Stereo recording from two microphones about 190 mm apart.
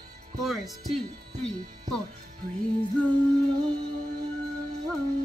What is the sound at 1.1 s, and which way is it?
Speech, 35° right (ahead or behind).